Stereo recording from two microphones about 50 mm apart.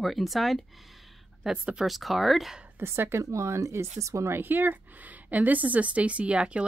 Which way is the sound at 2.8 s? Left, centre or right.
Right.